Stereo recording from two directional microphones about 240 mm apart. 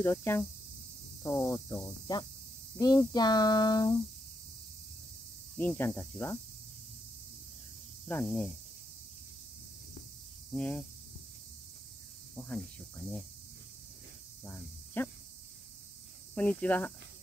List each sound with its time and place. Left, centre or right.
0.0 s speech: centre
5.6 s speech: centre
8.1 s speech: centre
10.5 s speech: centre
12.4 s speech: centre
14.4 s cricket: centre
16.3 s speech: centre